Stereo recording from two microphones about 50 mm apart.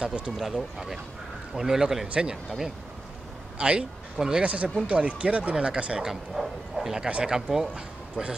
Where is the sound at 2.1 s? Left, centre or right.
Centre.